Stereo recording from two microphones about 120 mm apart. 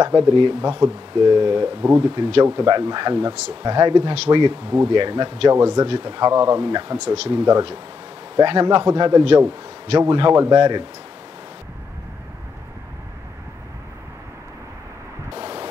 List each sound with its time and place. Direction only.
0.1 s speech: 55° right (ahead or behind)
15.4 s static: 55° right (ahead or behind)